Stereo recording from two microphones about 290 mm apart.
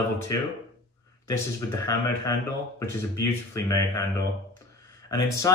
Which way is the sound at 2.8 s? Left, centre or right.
Centre.